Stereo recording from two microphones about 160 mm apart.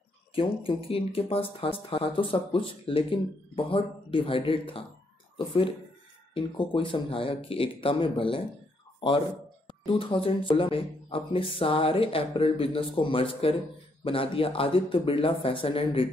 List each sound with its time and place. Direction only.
0.4 s speech: 35° left (ahead or behind)
6.3 s speech: 30° left (ahead or behind)
9.8 s speech: 35° left (ahead or behind)